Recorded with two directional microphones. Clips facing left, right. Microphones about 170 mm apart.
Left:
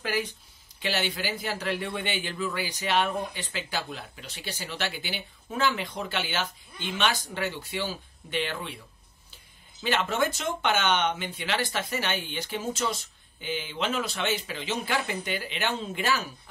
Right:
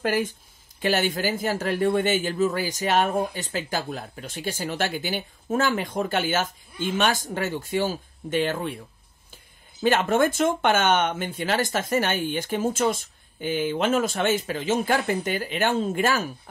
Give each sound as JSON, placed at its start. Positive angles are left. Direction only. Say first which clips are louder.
{"t": 0.0, "sound": "a man's voice", "louder": "right 6 dB", "side_deg": -50}